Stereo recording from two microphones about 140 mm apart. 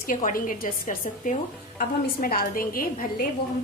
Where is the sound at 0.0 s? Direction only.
75° left (ahead or behind).